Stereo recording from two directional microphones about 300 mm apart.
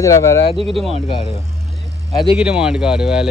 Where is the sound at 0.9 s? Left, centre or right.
Centre.